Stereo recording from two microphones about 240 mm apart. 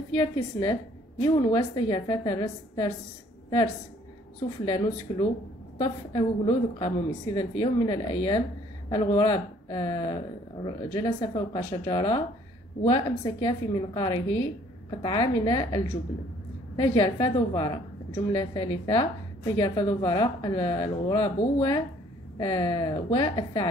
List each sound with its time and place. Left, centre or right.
0.1 s a woman's voice: centre